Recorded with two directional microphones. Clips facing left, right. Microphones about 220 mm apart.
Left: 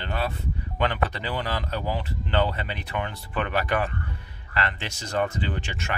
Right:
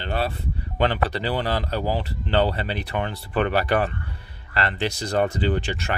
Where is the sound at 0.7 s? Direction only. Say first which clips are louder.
Right 4 dB; 35° right (ahead or behind).